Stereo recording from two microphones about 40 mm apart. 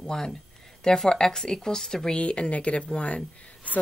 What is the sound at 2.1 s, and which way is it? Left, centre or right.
Speech, left.